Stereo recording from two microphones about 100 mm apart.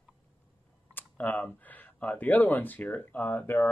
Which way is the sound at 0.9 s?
20° left (ahead or behind).